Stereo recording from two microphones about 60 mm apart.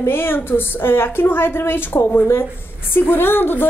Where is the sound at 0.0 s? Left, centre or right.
Left.